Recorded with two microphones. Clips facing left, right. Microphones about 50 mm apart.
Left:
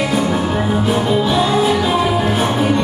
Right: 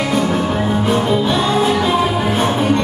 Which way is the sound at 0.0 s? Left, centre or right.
Centre.